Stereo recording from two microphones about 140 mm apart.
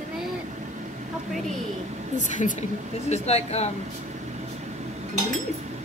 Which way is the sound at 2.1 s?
65° left (ahead or behind).